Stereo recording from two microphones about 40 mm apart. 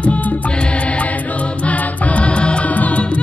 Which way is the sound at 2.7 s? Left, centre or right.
Left.